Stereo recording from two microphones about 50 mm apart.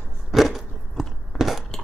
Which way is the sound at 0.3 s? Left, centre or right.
Centre.